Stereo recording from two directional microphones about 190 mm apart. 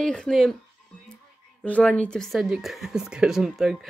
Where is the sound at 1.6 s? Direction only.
5° left (ahead or behind).